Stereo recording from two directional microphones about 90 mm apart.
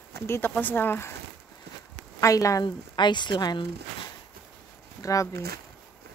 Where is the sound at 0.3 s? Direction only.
20° left (ahead or behind).